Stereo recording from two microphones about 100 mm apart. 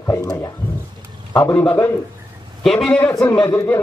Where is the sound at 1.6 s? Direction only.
20° left (ahead or behind).